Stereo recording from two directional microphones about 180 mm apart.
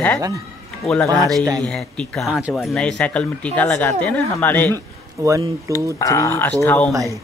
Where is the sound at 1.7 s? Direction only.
Centre (ahead or behind).